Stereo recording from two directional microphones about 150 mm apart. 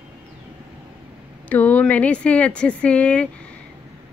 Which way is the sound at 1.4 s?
10° left (ahead or behind).